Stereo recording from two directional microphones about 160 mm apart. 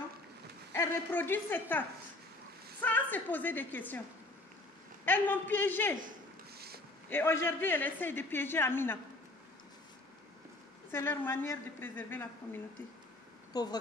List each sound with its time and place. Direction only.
0.7 s a man's voice: 15° left (ahead or behind)
5.0 s a man's voice: 10° left (ahead or behind)
7.1 s a man's voice: 15° left (ahead or behind)
10.9 s a man's voice: 15° left (ahead or behind)
13.5 s speech: 25° left (ahead or behind)